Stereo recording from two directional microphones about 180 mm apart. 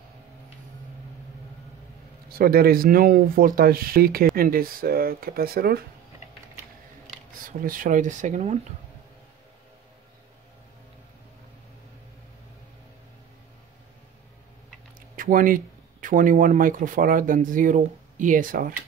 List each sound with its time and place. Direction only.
2.2 s speech: 55° right (ahead or behind)
7.4 s speech: 50° right (ahead or behind)
15.1 s speech: 50° right (ahead or behind)